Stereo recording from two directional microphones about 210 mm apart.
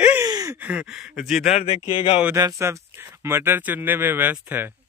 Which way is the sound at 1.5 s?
30° left (ahead or behind).